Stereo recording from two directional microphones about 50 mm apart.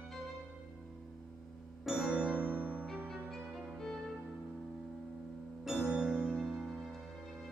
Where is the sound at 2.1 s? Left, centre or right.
Right.